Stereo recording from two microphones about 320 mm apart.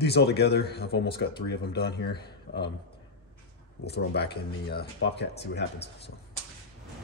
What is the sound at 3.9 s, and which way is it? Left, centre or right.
A man's voice, left.